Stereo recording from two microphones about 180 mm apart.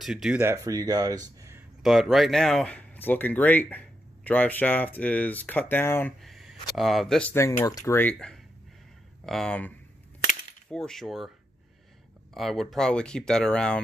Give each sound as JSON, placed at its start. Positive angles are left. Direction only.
{"t": 0.0, "sound": "speech", "side_deg": 0}
{"t": 0.4, "sound": "speech", "side_deg": -15}
{"t": 1.8, "sound": "speech", "side_deg": 0}
{"t": 6.2, "sound": "speech", "side_deg": 0}
{"t": 7.3, "sound": "speech", "side_deg": 15}
{"t": 12.4, "sound": "speech", "side_deg": 0}